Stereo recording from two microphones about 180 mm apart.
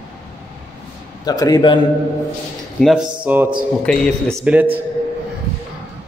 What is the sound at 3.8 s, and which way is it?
Speech, 5° left (ahead or behind).